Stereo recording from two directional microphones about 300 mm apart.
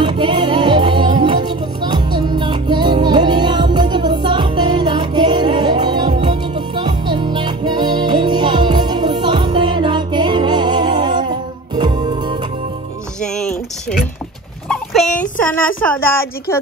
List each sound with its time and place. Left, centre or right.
0.0 s music: centre
13.2 s a sound: centre
15.8 s a woman's voice: centre